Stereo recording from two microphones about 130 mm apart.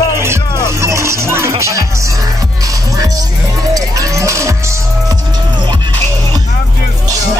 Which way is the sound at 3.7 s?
25° right (ahead or behind).